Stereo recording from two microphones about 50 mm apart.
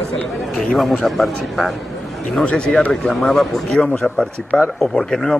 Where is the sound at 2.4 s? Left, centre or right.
Left.